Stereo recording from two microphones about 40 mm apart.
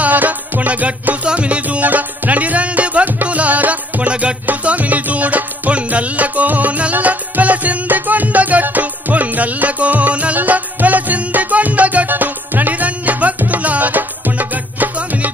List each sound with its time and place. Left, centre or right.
0.0 s music: right
1.2 s music: right
1.9 s music: right
4.1 s music: right
4.6 s music: right